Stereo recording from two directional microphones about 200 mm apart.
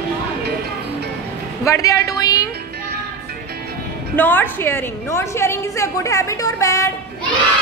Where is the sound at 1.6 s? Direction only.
15° left (ahead or behind).